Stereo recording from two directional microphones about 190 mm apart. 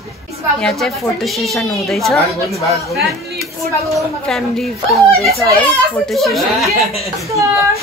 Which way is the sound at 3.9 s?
Centre (ahead or behind).